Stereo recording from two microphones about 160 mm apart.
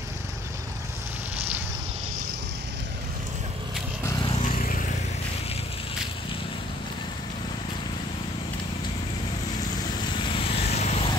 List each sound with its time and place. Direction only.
4.0 s vehicle: 20° left (ahead or behind)
4.5 s vehicle: 65° left (ahead or behind)
9.9 s vehicle: 30° left (ahead or behind)